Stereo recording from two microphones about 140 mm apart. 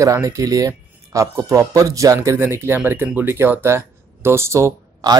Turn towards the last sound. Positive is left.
turn(degrees=-20)  # may be behind; listen again after turning